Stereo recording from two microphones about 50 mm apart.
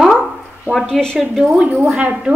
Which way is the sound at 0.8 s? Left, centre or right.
Centre.